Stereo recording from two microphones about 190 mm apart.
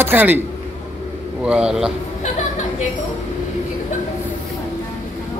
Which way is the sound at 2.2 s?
40° left (ahead or behind).